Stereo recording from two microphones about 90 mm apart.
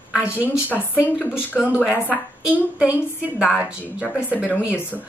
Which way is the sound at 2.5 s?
15° right (ahead or behind).